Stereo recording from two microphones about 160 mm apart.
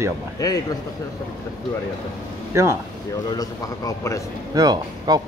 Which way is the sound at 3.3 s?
25° left (ahead or behind).